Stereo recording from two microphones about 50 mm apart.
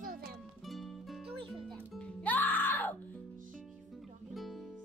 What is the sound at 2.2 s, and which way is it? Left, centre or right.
Music, left.